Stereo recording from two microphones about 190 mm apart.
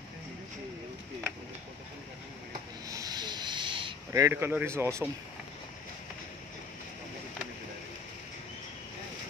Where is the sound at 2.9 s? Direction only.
20° right (ahead or behind).